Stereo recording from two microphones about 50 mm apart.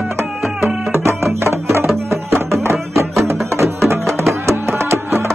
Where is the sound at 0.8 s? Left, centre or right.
Right.